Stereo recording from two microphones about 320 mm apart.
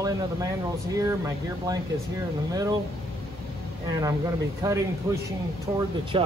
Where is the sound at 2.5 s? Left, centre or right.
Centre.